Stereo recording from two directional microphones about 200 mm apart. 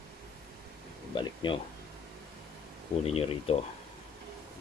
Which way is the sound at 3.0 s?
30° left (ahead or behind).